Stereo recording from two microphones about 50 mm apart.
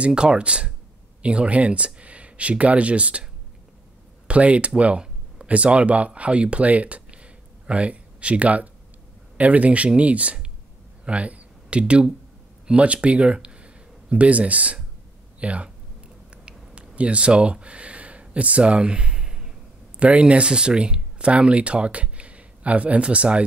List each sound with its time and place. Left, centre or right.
0.0 s speech: centre
4.3 s speech: right
11.1 s a sound: right
12.6 s speech: right
16.4 s a sound: right
20.0 s speech: right